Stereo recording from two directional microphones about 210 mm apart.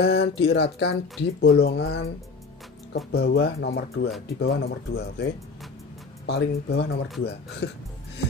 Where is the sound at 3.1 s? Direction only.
50° left (ahead or behind).